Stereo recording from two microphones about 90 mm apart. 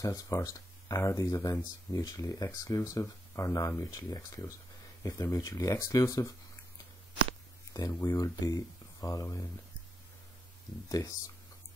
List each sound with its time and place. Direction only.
0.0 s speech: 40° left (ahead or behind)
8.0 s speech: 40° left (ahead or behind)
10.9 s speech: 40° left (ahead or behind)